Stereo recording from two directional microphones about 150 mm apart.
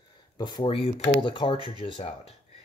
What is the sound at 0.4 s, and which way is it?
Speech, 35° left (ahead or behind).